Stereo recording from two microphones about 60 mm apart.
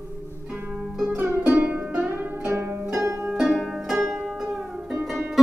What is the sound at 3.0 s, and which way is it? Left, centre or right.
Music, right.